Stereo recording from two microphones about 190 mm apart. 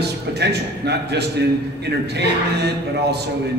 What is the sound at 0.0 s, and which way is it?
A man's voice, 60° right (ahead or behind).